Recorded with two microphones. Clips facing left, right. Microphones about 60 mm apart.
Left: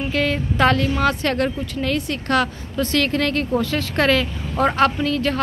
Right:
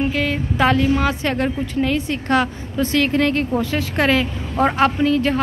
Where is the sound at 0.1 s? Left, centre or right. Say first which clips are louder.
Even; centre.